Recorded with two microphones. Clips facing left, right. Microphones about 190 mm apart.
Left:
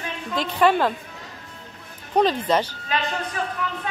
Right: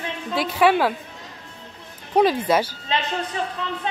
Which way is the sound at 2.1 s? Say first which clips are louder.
Right 2 dB; 10° right (ahead or behind).